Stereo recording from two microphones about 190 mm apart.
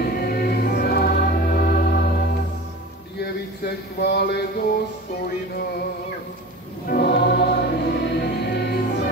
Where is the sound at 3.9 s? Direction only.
60° left (ahead or behind).